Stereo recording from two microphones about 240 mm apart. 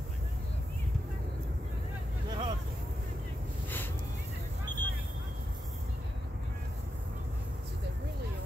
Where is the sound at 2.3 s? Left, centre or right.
Centre.